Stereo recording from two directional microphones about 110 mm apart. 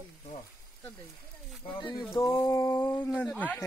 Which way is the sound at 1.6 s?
55° left (ahead or behind).